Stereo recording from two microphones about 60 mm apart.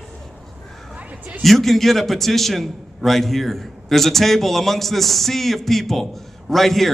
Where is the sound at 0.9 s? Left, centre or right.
Right.